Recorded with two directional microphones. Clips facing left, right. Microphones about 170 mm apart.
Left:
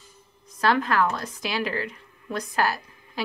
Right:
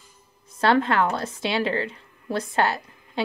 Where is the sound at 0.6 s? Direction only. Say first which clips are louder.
Right 2 dB; 30° right (ahead or behind).